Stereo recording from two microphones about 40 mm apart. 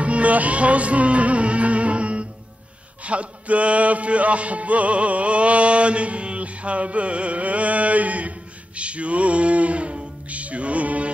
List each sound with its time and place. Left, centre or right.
0.0 s music: right